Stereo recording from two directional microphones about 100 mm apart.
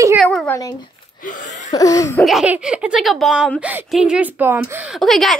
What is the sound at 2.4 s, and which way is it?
Speech, 10° right (ahead or behind).